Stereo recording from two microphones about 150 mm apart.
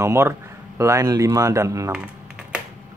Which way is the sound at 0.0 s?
20° right (ahead or behind).